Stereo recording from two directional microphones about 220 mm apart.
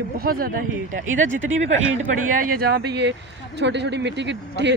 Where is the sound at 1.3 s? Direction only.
60° right (ahead or behind).